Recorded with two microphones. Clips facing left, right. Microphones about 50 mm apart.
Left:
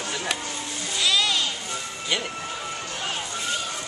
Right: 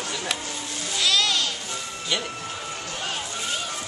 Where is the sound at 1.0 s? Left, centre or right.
Centre.